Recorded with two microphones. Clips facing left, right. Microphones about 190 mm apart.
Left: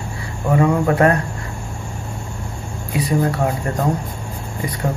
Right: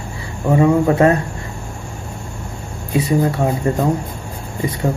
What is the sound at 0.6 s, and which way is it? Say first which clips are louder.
Speech: right 3 dB; 25° right (ahead or behind).